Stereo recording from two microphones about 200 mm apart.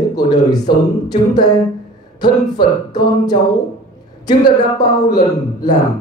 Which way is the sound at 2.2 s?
20° left (ahead or behind).